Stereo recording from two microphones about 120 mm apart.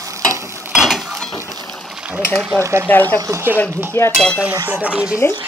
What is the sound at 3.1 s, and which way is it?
Speech, 30° right (ahead or behind).